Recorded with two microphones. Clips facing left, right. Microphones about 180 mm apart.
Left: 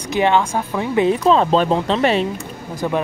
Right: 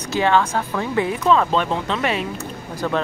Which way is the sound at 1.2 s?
30° left (ahead or behind).